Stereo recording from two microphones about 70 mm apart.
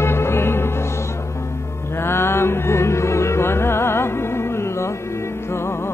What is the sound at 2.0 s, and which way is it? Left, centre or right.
Music, left.